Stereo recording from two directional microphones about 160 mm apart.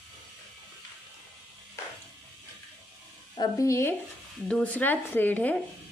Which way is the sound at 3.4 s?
20° left (ahead or behind).